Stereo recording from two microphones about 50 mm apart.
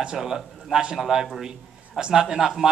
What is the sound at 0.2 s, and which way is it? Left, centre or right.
A man's voice, centre.